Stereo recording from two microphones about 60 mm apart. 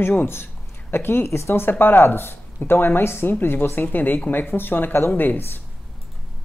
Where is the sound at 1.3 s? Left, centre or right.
Left.